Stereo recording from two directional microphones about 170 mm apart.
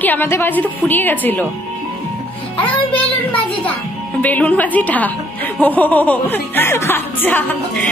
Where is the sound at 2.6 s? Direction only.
10° left (ahead or behind).